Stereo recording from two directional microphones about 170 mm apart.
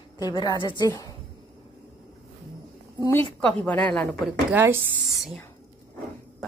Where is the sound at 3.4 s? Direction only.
10° left (ahead or behind).